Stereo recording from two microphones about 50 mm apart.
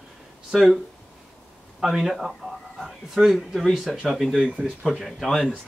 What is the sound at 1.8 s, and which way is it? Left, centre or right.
Speech, centre.